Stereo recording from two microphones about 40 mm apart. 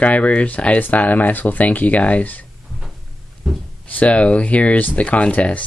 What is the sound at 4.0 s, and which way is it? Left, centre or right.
Speech, left.